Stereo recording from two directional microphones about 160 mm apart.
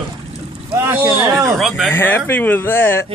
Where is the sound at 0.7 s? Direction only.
15° right (ahead or behind).